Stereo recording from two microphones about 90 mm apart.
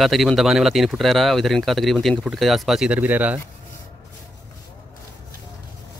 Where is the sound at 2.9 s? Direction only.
20° right (ahead or behind).